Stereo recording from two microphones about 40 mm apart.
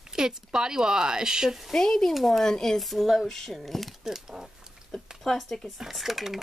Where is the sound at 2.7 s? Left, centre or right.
Centre.